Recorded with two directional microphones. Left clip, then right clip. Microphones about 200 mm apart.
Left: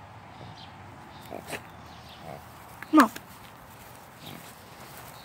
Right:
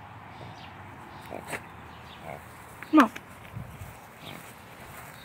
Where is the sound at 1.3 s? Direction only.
25° left (ahead or behind).